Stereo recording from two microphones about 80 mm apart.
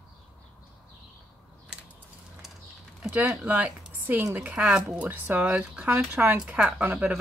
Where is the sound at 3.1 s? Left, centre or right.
Right.